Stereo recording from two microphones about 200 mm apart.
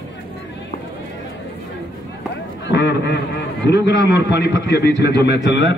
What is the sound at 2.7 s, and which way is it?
A man's voice, 60° left (ahead or behind).